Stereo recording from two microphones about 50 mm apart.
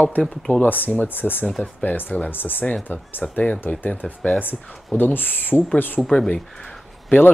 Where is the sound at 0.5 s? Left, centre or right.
Left.